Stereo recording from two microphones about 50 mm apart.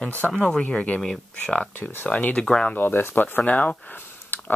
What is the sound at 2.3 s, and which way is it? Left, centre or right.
Speech, centre.